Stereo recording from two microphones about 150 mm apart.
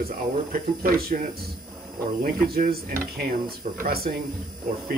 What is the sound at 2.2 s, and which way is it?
Speech, 85° right.